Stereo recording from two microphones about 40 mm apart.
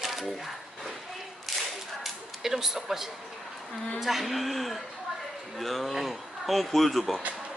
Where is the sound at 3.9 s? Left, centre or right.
Centre.